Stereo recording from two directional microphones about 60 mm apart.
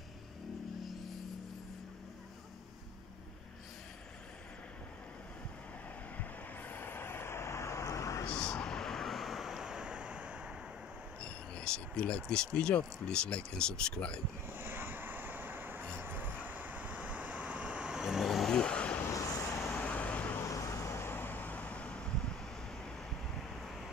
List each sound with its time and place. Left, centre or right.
6.1 s vehicle: left
8.3 s vehicle: centre
11.1 s speech: centre
14.5 s vehicle: right; by 18.5 s centre
18.5 s vehicle: centre
19.9 s vehicle: left
20.4 s vehicle: left; by 22.3 s centre
23.3 s vehicle: centre